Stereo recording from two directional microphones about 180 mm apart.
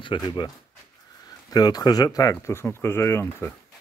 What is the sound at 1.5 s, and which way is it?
Speech, 20° left (ahead or behind).